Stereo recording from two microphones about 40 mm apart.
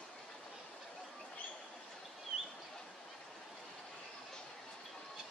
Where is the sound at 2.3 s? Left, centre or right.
Right.